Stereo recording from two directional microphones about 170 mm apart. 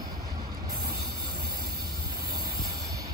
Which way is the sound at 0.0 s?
20° right (ahead or behind).